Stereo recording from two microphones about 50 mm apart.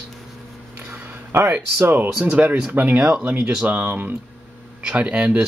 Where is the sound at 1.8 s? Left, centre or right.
Right.